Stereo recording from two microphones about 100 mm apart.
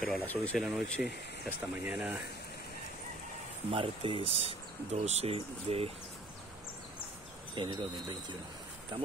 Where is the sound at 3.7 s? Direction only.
60° right (ahead or behind); by 5.9 s 80° right.